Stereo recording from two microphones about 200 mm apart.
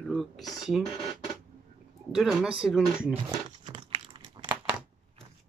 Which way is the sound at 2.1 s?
5° right (ahead or behind).